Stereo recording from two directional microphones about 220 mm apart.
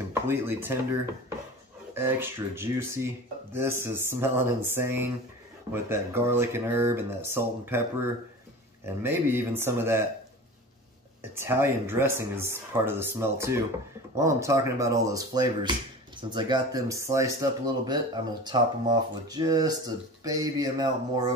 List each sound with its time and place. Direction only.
0.1 s speech: 10° right (ahead or behind)
2.0 s speech: 10° right (ahead or behind)
8.8 s speech: 10° right (ahead or behind)
11.3 s speech: 10° right (ahead or behind)